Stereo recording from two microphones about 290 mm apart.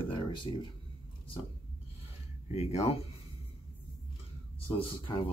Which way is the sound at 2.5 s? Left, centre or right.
Left.